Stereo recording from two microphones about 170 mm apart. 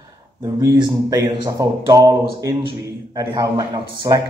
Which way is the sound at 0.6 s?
20° right (ahead or behind).